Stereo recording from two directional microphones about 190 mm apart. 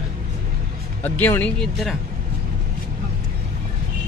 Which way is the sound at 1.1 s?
10° left (ahead or behind).